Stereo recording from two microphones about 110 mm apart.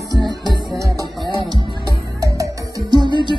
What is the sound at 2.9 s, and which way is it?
Music, 40° right (ahead or behind).